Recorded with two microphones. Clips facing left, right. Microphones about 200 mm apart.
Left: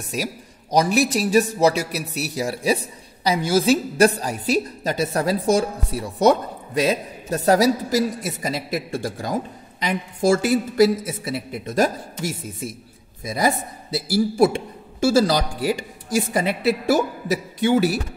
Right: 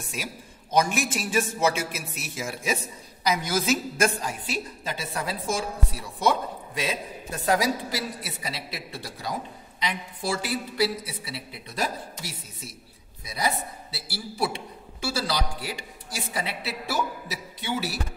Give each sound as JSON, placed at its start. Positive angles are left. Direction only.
{"t": 0.1, "sound": "a woman's voice", "side_deg": 40}